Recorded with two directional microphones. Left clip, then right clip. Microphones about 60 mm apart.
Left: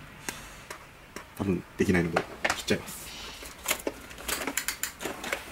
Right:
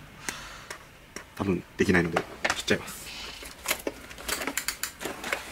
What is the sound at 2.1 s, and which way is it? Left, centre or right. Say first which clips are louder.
Drawer open or close: even; centre.